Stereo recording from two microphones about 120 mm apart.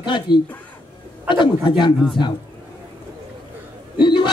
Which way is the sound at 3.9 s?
40° left (ahead or behind).